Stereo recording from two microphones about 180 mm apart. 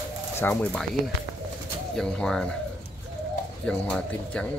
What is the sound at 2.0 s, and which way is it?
Speech, 5° left (ahead or behind).